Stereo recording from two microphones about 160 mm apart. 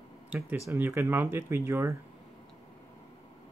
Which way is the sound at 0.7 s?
15° right (ahead or behind).